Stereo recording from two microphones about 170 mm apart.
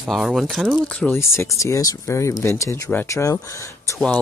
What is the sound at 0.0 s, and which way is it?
Speech, centre (ahead or behind).